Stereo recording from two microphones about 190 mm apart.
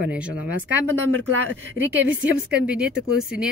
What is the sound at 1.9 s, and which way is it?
Speech, 10° right (ahead or behind).